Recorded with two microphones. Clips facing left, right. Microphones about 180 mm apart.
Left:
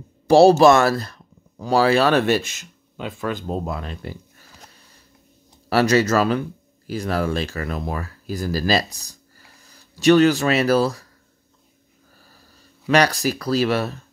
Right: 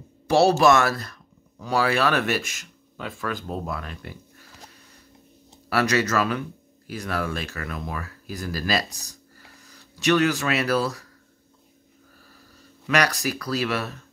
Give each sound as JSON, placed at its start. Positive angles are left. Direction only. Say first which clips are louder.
{"t": 0.3, "sound": "speech", "louder": "left 6 dB", "side_deg": 30}
{"t": 5.7, "sound": "speech", "louder": "left 5 dB", "side_deg": 30}
{"t": 12.8, "sound": "speech", "louder": "left 5 dB", "side_deg": 30}